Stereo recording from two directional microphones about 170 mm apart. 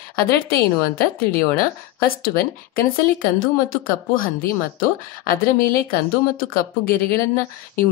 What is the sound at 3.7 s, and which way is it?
Speech, 55° left (ahead or behind).